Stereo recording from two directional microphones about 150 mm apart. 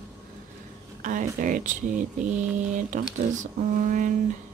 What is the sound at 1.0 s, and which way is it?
Speech, 60° right (ahead or behind).